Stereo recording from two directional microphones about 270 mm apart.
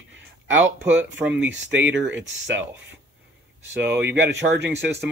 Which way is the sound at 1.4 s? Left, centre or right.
Right.